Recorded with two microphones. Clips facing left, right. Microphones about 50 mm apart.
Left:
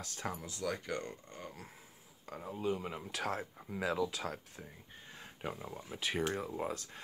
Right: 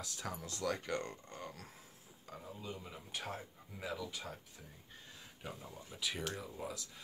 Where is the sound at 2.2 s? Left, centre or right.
Left.